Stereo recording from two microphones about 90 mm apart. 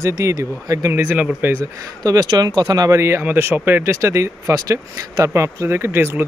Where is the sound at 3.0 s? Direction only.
25° right (ahead or behind).